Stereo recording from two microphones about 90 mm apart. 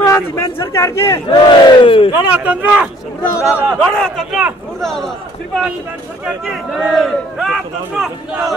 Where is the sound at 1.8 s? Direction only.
80° left.